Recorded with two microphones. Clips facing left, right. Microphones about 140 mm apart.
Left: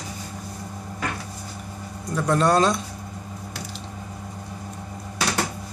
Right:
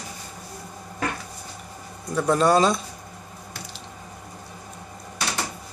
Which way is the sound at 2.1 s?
5° right (ahead or behind).